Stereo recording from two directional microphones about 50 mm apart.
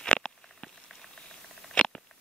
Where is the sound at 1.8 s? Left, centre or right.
Centre.